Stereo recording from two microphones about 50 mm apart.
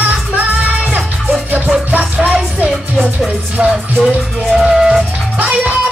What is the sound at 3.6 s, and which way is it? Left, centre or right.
Music, right.